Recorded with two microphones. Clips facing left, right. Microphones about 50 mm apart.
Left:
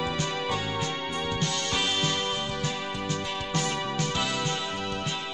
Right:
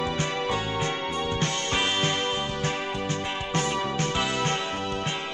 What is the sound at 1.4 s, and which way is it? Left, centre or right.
Music, right.